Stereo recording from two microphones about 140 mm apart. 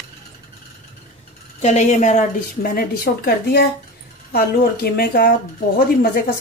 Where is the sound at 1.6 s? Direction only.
55° left (ahead or behind).